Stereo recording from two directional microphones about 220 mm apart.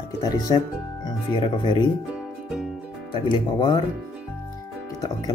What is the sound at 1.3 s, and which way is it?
Speech, 20° left (ahead or behind).